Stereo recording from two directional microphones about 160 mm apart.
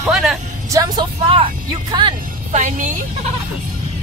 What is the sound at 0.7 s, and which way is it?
Vehicle, 20° right (ahead or behind).